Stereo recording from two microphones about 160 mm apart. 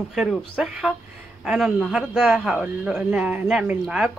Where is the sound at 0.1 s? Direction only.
5° right (ahead or behind).